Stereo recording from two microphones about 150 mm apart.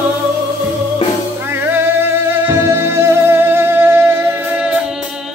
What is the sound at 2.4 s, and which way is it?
Music, 15° right (ahead or behind).